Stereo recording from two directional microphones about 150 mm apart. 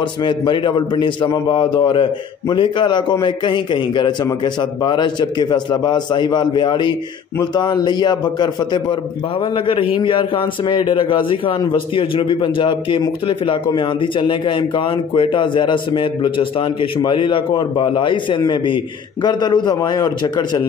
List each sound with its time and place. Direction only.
0.2 s a man's voice: 30° left (ahead or behind)